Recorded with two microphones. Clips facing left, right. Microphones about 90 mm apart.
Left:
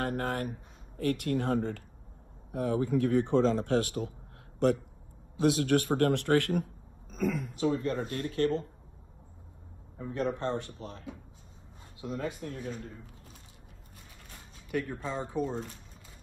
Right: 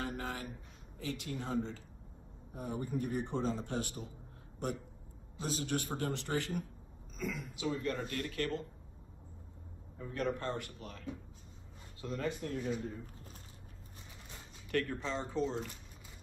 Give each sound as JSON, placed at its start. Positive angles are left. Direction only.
{"t": 0.0, "sound": "speech", "side_deg": 55}
{"t": 2.5, "sound": "a man's voice", "side_deg": 90}
{"t": 5.4, "sound": "a man's voice", "side_deg": 65}
{"t": 7.1, "sound": "a woman's voice", "side_deg": 55}
{"t": 7.8, "sound": "speech", "side_deg": 30}
{"t": 9.9, "sound": "speech", "side_deg": 25}
{"t": 12.0, "sound": "speech", "side_deg": 10}
{"t": 13.0, "sound": "a sound", "side_deg": -40}
{"t": 14.7, "sound": "speech", "side_deg": 10}
{"t": 15.5, "sound": "speech", "side_deg": 0}